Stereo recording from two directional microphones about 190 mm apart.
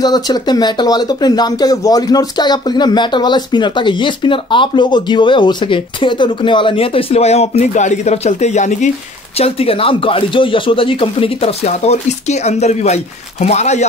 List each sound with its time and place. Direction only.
0.0 s speech: 20° left (ahead or behind)